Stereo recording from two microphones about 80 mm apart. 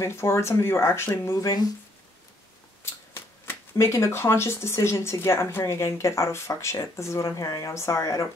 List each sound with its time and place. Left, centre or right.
0.0 s speech: left
2.8 s speech: left